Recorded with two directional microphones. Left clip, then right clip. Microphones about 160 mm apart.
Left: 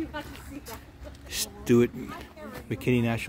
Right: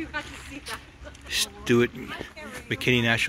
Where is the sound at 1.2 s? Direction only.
15° left (ahead or behind).